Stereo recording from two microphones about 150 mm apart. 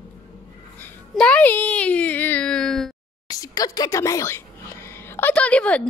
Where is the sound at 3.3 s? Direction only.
25° left (ahead or behind); by 5.9 s 10° left (ahead or behind).